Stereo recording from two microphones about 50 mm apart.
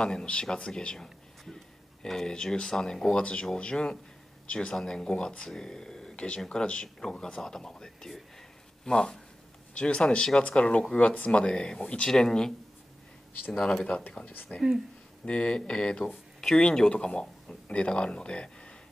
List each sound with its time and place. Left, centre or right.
0.0 s a man's voice: centre
16.3 s a sound: centre
16.7 s speech: centre